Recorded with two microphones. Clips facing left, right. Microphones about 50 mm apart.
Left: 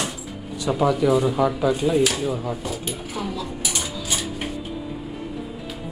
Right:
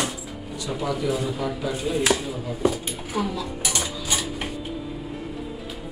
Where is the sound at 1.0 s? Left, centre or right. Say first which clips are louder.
Left 7 dB; left.